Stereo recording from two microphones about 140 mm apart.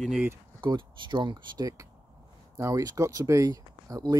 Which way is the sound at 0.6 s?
35° right (ahead or behind).